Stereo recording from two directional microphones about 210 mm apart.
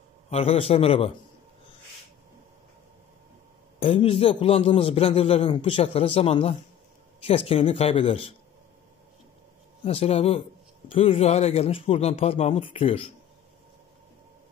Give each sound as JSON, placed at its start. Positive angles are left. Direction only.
{"t": 0.3, "sound": "a man's voice", "side_deg": 30}
{"t": 3.8, "sound": "a man's voice", "side_deg": 25}
{"t": 9.8, "sound": "a man's voice", "side_deg": 30}